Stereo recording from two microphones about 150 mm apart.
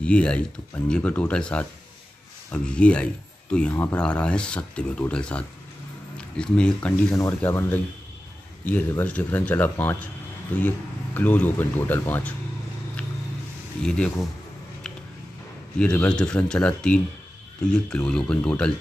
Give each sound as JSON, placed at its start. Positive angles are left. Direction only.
{"t": 0.0, "sound": "speech", "side_deg": 5}
{"t": 11.1, "sound": "speech", "side_deg": 10}
{"t": 13.8, "sound": "speech", "side_deg": 5}
{"t": 15.8, "sound": "speech", "side_deg": 5}